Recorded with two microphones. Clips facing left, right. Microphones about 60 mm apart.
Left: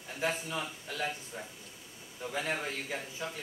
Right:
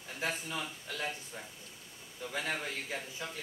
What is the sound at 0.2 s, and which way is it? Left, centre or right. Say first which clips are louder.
Speech: left 3 dB; centre.